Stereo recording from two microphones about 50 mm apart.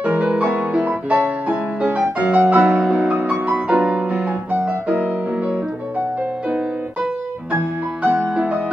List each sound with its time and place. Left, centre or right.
0.0 s music: right